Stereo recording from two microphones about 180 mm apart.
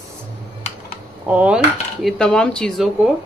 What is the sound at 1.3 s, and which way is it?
Speech, 5° right (ahead or behind).